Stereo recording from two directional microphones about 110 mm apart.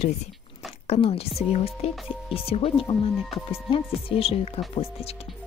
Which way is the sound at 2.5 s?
55° left (ahead or behind).